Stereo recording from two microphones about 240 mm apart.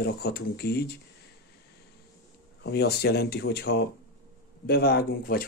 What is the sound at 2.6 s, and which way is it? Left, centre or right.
Speech, left.